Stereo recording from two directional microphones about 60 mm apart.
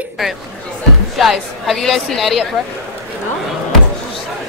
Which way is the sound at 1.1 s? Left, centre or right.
Centre.